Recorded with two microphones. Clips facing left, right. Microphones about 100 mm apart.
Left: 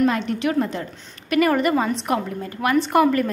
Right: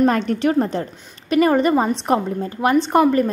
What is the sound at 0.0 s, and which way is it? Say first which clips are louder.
A woman's voice: right 3 dB; 40° right (ahead or behind).